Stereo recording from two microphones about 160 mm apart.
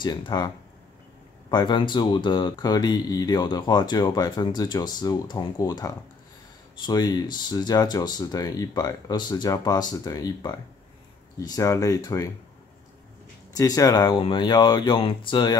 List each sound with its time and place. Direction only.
0.0 s speech: 25° left (ahead or behind)
1.5 s speech: 25° left (ahead or behind)
13.6 s speech: 20° left (ahead or behind)